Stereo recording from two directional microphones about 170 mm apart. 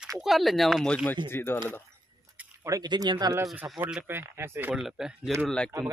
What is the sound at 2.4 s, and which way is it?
Speech, 20° right (ahead or behind).